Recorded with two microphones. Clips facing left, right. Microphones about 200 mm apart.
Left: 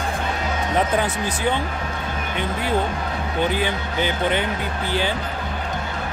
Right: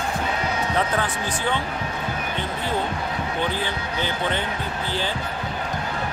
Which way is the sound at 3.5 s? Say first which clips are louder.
Left 4 dB; 15° left (ahead or behind).